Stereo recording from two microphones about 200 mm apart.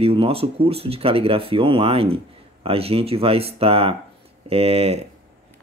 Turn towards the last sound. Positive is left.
turn(degrees=-30)  # may be behind; listen again after turning